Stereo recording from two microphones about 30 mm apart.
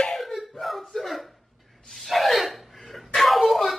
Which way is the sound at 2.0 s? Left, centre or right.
Centre.